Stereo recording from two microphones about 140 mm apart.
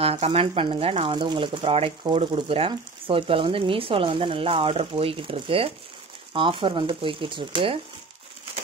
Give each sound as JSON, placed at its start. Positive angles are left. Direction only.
{"t": 0.0, "sound": "speech", "side_deg": -45}